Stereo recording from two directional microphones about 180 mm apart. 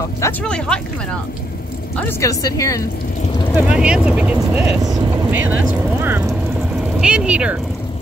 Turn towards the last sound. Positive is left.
turn(degrees=-5)  # may be behind; listen again after turning